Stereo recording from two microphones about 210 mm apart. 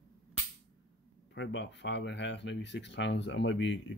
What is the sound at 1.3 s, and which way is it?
Speech, 60° left (ahead or behind).